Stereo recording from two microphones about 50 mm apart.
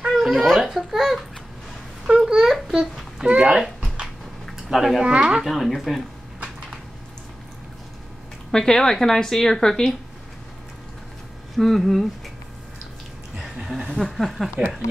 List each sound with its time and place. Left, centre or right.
0.2 s a child's voice: centre
2.0 s babbling: centre
2.7 s a sound: centre
3.3 s speech: right
3.5 s a sound: centre
4.7 s a child's voice: centre
5.0 s speech: centre
5.5 s a child's voice: centre
8.5 s speech: centre
11.5 s a child's voice: centre
13.4 s a sound: centre
13.9 s a child's voice: centre